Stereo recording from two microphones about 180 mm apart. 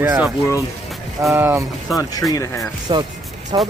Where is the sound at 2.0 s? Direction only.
20° left (ahead or behind).